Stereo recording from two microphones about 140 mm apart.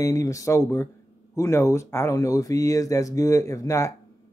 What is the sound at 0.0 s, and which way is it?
Speech, 25° left (ahead or behind).